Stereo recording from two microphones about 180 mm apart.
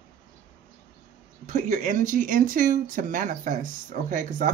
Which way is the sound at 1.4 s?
45° right (ahead or behind).